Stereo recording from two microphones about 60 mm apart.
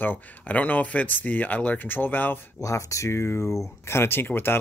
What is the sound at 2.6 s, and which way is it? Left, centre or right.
Speech, left.